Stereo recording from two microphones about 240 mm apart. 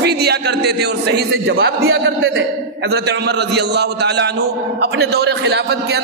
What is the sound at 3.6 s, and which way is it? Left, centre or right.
A man's voice, right.